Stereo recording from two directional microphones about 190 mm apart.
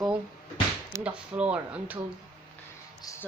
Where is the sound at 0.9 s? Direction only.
5° right (ahead or behind).